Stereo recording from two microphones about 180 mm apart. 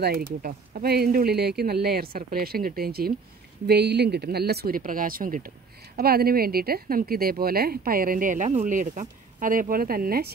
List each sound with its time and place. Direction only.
0.0 s speech: 55° right (ahead or behind)